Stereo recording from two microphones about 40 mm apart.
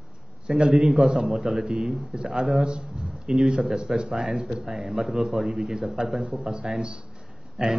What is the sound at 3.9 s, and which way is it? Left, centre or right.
A man's voice, centre.